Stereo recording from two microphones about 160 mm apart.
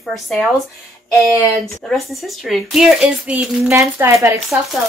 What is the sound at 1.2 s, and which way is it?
Speech, 15° left (ahead or behind).